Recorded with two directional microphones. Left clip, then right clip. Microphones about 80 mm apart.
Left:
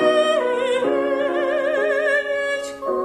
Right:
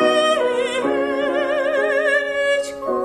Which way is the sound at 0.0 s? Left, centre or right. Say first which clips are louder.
Right 1 dB; right.